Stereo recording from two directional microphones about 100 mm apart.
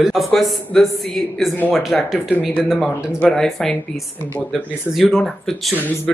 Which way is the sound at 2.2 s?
15° left (ahead or behind).